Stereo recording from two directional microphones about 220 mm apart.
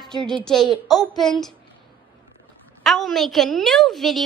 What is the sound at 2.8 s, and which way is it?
Speech, centre (ahead or behind).